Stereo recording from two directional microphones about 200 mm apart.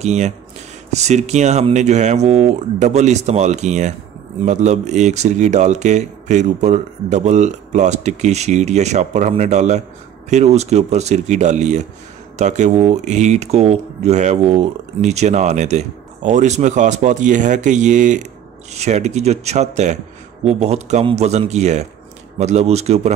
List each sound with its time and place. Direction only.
0.0 s speech: 35° right (ahead or behind)